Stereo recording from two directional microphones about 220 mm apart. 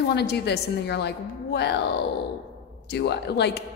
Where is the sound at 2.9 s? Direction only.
50° left (ahead or behind).